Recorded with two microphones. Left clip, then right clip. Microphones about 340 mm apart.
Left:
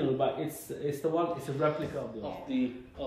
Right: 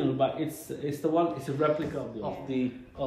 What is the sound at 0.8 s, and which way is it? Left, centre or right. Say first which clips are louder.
Speech: right 3 dB; right.